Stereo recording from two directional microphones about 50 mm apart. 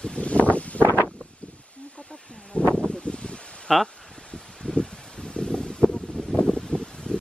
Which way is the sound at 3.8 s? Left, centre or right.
Centre.